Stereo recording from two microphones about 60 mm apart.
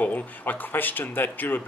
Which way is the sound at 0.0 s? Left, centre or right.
Left.